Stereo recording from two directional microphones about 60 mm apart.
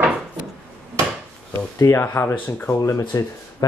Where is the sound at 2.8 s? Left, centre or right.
Left.